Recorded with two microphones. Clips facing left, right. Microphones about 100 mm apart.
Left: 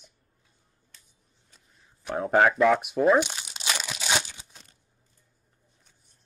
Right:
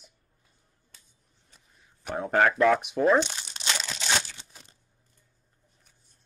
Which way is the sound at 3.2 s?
10° left (ahead or behind).